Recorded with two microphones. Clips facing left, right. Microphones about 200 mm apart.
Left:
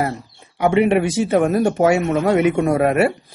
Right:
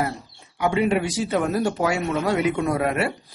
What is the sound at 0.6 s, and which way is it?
Speech, 25° left (ahead or behind).